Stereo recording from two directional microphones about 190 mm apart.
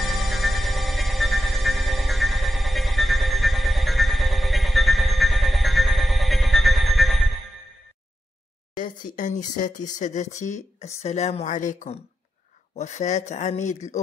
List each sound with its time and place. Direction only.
0.0 s music: centre (ahead or behind)
8.7 s speech: 45° left (ahead or behind)